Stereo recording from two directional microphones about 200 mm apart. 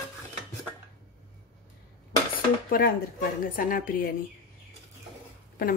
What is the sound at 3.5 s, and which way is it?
Speech, 45° left (ahead or behind).